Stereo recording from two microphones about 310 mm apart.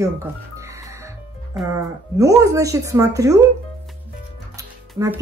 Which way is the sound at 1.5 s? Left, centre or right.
Centre.